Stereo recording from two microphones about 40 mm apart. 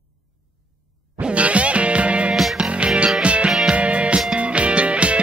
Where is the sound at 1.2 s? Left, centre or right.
Right.